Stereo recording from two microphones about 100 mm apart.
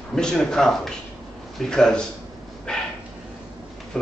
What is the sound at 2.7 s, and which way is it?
Dog, 5° left (ahead or behind).